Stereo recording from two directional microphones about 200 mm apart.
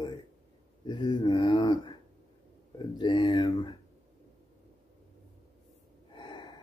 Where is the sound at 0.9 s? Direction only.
20° left (ahead or behind).